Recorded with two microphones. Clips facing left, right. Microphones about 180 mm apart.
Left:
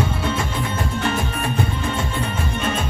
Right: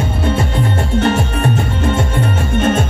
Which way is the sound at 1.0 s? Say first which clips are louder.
Right 9 dB; 65° right (ahead or behind).